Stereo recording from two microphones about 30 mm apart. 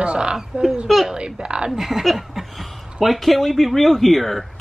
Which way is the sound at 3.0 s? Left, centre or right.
Centre.